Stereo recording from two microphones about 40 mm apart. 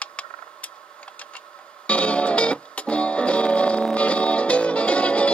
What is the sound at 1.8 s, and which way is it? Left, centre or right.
Music, left.